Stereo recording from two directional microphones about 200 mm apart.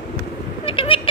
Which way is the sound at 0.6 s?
25° left (ahead or behind).